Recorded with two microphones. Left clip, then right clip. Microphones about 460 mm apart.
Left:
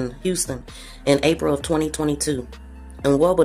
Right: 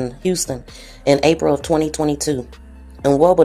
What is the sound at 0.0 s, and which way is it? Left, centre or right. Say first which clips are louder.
Speech: right 4 dB; left.